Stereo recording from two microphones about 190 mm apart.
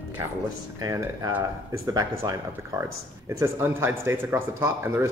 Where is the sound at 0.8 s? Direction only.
20° right (ahead or behind).